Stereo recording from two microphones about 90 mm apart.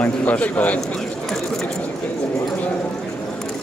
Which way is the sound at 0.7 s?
5° left (ahead or behind).